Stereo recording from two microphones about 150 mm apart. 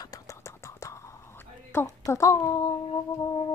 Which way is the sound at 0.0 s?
25° left (ahead or behind).